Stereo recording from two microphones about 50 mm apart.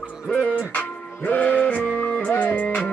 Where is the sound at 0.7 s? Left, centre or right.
Left.